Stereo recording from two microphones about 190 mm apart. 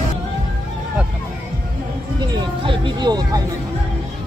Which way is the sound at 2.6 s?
25° right (ahead or behind).